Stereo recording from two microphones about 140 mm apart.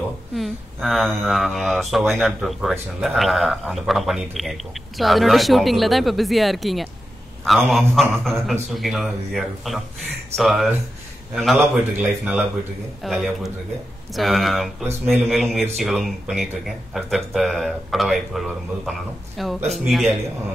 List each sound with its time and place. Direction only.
0.4 s speech: centre (ahead or behind)
11.6 s a man's voice: 15° right (ahead or behind)
13.0 s speech: centre (ahead or behind)